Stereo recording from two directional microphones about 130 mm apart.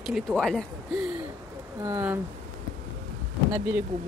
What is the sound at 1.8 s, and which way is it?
Speech, 20° right (ahead or behind).